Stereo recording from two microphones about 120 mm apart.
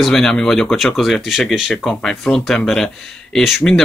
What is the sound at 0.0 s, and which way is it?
Speech, 5° left (ahead or behind).